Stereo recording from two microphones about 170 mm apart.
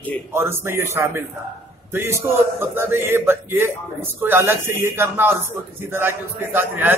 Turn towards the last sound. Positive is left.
turn(degrees=-10)  # may be behind; listen again after turning